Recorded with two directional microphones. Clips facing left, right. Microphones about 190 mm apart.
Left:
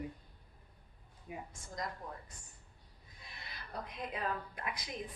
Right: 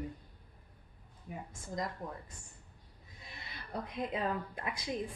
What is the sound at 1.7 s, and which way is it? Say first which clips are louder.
Speech: right 4 dB; 25° right (ahead or behind).